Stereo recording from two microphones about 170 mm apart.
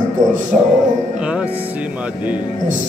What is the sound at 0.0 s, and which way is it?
Speech, 50° right (ahead or behind).